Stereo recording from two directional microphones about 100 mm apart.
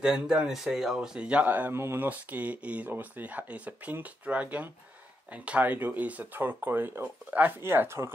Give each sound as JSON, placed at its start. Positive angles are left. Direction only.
{"t": 0.0, "sound": "speech", "side_deg": -10}